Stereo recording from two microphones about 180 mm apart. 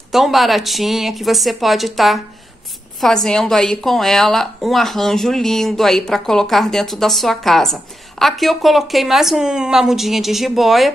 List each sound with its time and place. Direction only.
0.1 s speech: centre (ahead or behind)